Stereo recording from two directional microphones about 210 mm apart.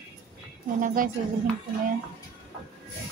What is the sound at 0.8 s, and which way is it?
Speech, 40° right (ahead or behind).